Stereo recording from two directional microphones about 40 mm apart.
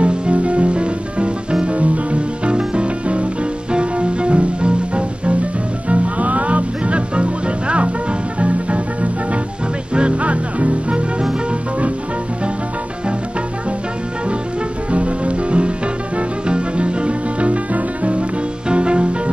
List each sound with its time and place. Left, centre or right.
0.0 s music: right
14.9 s music: right